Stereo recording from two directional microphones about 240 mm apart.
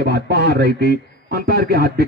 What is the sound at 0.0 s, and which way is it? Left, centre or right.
A man's voice, right.